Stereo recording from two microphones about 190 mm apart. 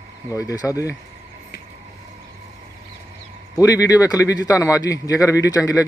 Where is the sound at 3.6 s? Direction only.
20° left (ahead or behind).